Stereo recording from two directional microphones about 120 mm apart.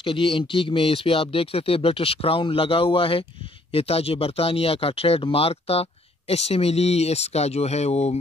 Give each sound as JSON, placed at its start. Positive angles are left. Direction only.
{"t": 0.0, "sound": "speech", "side_deg": 45}